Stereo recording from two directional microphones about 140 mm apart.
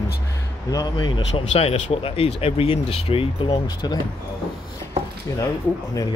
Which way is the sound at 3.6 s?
30° left (ahead or behind).